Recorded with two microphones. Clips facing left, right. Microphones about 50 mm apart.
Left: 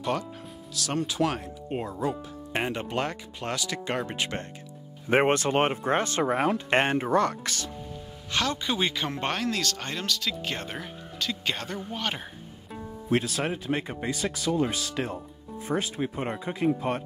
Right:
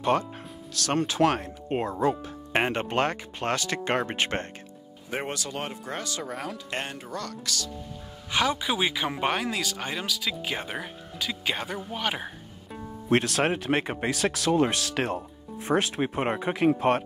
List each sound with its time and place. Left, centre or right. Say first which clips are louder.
0.0 s speech: right 5 dB; right
0.7 s speech: right 3 dB; right
5.1 s speech: left 10 dB; left
8.3 s speech: right 2 dB; centre
13.1 s speech: right 3 dB; right